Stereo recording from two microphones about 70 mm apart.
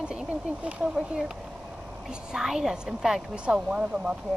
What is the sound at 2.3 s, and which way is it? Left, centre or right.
Speech, centre.